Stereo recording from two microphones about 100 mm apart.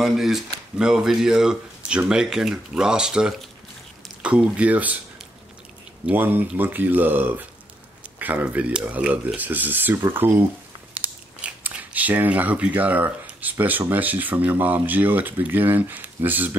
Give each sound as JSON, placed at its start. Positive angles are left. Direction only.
{"t": 0.0, "sound": "speech", "side_deg": 0}
{"t": 6.0, "sound": "speech", "side_deg": -20}